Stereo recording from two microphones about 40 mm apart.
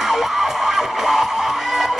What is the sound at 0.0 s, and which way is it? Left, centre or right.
Music, centre.